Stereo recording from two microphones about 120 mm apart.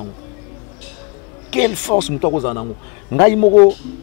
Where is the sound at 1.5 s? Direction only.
5° right (ahead or behind).